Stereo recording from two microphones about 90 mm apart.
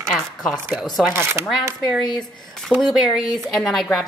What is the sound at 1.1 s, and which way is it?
Speech, 30° right (ahead or behind).